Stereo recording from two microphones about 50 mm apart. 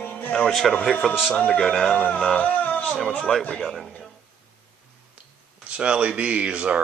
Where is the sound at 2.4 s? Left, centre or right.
Left.